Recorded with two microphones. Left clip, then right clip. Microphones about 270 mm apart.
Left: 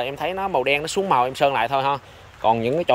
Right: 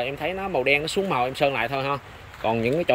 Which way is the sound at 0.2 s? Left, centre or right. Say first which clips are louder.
Left 5 dB; centre.